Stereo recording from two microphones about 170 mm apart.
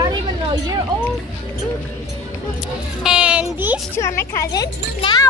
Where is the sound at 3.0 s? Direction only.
5° right (ahead or behind).